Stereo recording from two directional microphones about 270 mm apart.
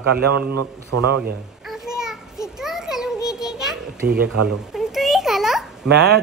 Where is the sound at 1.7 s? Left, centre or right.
Centre.